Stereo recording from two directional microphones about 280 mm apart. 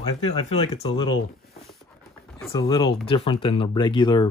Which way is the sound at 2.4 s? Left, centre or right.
Centre.